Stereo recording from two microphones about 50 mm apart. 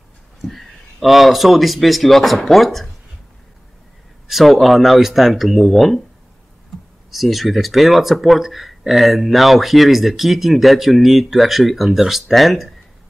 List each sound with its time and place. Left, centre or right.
0.4 s speech: centre
4.3 s speech: centre
7.1 s speech: centre